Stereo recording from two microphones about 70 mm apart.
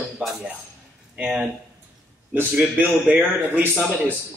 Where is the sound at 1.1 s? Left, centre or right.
Centre.